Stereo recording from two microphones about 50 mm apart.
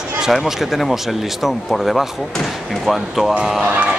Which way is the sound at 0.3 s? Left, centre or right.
Centre.